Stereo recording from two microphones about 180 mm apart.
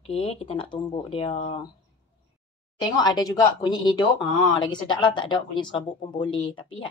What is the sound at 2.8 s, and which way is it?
A woman's voice, 20° left (ahead or behind).